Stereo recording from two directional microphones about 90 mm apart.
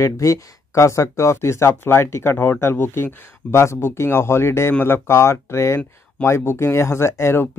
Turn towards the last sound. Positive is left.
turn(degrees=30)  # may be behind; listen again after turning